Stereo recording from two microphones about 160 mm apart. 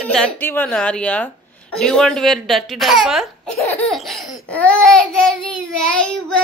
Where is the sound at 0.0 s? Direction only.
5° left (ahead or behind).